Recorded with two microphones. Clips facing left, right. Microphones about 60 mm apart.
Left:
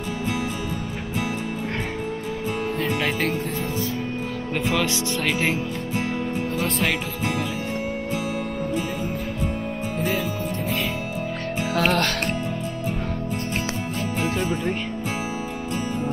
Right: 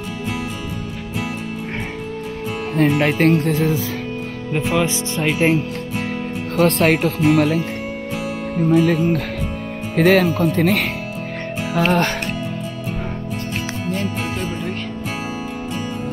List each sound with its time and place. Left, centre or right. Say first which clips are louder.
2.9 s speech: right 9 dB; right
3.3 s speech: right 8 dB; right
4.6 s speech: right 3 dB; right
6.5 s speech: right 12 dB; right
7.1 s speech: right 11 dB; right
8.6 s speech: right 11 dB; right
11.9 s speech: right 4 dB; centre
13.9 s music: right 1 dB; right
14.4 s speech: left 1 dB; centre